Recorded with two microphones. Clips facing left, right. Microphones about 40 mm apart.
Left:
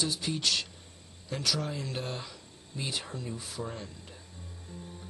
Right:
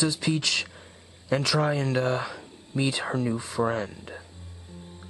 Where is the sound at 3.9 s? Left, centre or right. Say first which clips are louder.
Right 9 dB; right.